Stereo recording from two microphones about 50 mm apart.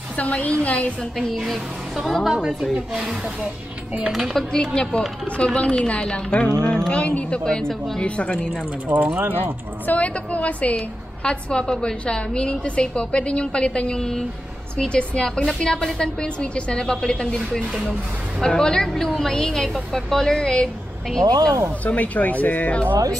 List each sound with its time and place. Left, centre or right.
0.2 s a woman's voice: left
1.1 s a woman's voice: centre
2.7 s speech: centre
4.1 s a woman's voice: centre
4.5 s a woman's voice: centre
8.8 s speech: right
9.9 s a woman's voice: left
11.2 s a woman's voice: centre
18.4 s a woman's voice: centre
21.8 s speech: left